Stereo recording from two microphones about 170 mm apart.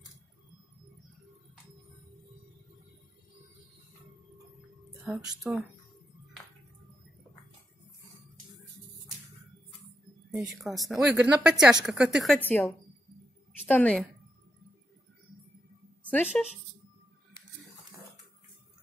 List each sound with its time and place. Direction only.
5.0 s a woman's voice: 5° right (ahead or behind)
10.3 s a woman's voice: centre (ahead or behind)
12.4 s a woman's voice: 10° left (ahead or behind)
16.1 s a woman's voice: 10° left (ahead or behind)